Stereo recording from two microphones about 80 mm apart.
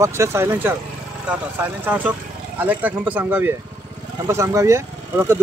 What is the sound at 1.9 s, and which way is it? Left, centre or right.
Speech, centre.